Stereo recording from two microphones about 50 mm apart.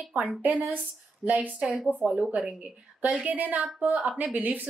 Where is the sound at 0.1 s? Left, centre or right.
Right.